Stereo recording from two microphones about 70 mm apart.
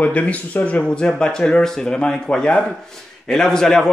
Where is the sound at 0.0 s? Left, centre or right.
Left.